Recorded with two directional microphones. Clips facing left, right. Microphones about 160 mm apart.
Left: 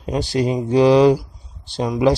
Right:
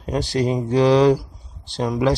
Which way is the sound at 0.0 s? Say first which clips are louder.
Left 1 dB; 15° left (ahead or behind).